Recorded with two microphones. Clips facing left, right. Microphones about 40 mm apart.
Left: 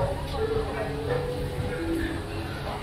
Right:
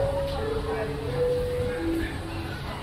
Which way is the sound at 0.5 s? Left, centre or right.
Centre.